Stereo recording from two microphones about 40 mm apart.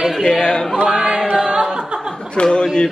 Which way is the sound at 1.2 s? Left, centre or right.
Centre.